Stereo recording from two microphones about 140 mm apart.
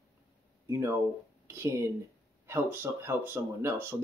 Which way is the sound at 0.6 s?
20° right (ahead or behind).